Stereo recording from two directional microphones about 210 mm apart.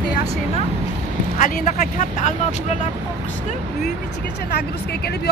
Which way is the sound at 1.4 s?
40° left (ahead or behind).